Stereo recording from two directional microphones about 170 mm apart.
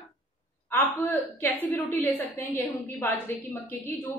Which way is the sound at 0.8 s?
15° left (ahead or behind).